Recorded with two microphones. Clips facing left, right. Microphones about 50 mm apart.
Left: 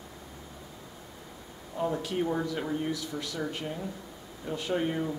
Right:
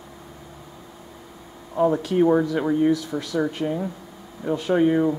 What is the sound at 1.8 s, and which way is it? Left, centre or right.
Speech, right.